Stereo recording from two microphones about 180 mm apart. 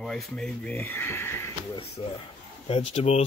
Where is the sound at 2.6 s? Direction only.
35° left (ahead or behind).